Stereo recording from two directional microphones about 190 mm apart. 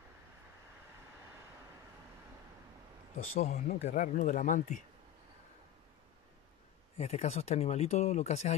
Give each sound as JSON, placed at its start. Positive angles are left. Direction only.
{"t": 3.3, "sound": "speech", "side_deg": 35}
{"t": 7.0, "sound": "speech", "side_deg": 35}